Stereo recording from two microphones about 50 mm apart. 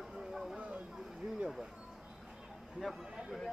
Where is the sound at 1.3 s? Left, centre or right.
Centre.